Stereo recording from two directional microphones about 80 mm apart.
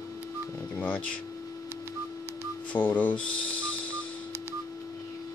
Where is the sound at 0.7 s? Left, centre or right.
Centre.